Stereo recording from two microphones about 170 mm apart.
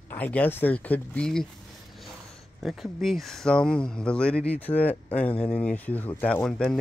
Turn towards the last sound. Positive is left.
turn(degrees=5)  # may be behind; listen again after turning